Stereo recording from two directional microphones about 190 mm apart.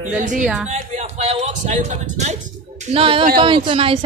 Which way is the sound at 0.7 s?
35° right (ahead or behind).